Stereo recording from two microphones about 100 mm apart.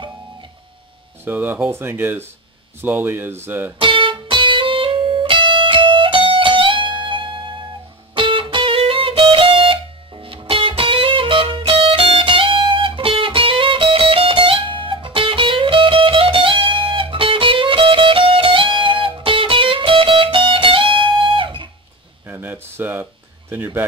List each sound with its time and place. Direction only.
1.2 s speech: 20° right (ahead or behind)
3.8 s music: 60° right (ahead or behind)
22.3 s a sound: 20° right (ahead or behind)